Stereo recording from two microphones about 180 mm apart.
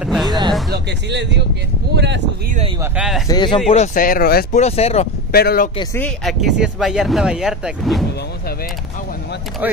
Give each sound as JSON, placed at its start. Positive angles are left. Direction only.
{"t": 0.0, "sound": "music", "side_deg": 0}
{"t": 0.7, "sound": "speech", "side_deg": -70}
{"t": 2.8, "sound": "speech", "side_deg": -5}
{"t": 3.3, "sound": "speech", "side_deg": 25}
{"t": 3.7, "sound": "speech", "side_deg": 45}
{"t": 4.6, "sound": "speech", "side_deg": 35}
{"t": 5.3, "sound": "speech", "side_deg": 60}
{"t": 5.9, "sound": "speech", "side_deg": 5}